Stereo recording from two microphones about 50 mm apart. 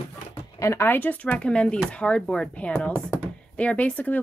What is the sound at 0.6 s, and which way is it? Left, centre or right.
Speech, left.